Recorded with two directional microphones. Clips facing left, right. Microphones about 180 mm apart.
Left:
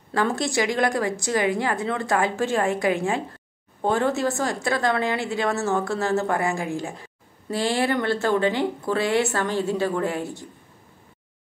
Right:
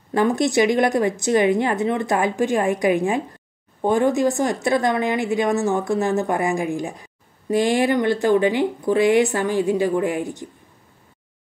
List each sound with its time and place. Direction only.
0.1 s a woman's voice: 20° right (ahead or behind)